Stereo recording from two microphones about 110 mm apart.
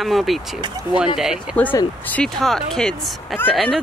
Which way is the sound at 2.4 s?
5° left (ahead or behind).